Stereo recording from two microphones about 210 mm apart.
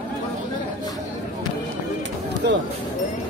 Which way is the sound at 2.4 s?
50° right (ahead or behind).